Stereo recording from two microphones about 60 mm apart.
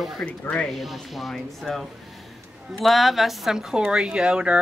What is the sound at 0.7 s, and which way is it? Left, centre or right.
Speech, centre.